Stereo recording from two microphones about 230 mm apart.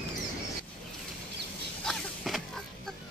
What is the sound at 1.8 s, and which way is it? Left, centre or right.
Power windows, centre.